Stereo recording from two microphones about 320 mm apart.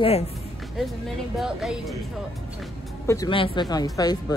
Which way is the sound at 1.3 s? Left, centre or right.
Centre.